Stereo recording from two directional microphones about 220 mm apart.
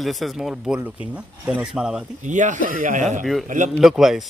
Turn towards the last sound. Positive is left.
turn(degrees=0)  # may be behind; listen again after turning